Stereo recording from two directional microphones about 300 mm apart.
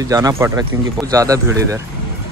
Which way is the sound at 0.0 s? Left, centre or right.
Centre.